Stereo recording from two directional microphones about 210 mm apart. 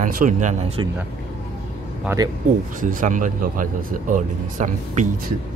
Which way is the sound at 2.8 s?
40° right (ahead or behind).